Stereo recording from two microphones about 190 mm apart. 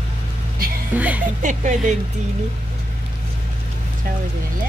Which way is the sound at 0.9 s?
10° right (ahead or behind).